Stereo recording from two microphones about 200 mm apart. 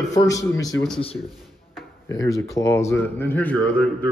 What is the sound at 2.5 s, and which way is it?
Speech, 15° left (ahead or behind).